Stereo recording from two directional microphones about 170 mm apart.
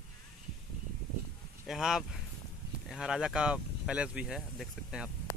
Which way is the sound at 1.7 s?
Centre (ahead or behind).